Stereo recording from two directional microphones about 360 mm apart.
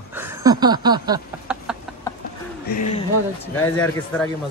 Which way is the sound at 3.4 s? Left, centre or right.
Centre.